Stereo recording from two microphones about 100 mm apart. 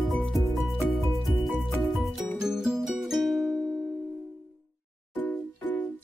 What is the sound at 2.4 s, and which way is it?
Music, 5° right (ahead or behind).